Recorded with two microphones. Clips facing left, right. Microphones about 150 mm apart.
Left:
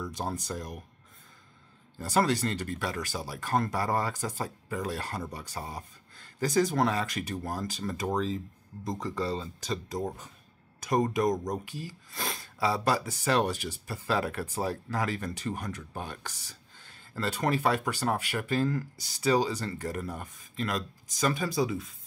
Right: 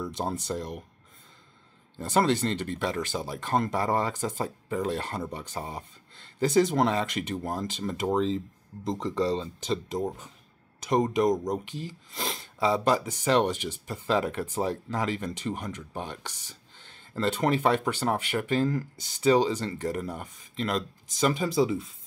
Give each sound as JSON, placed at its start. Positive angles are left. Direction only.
{"t": 0.1, "sound": "speech", "side_deg": -25}
{"t": 2.0, "sound": "speech", "side_deg": -20}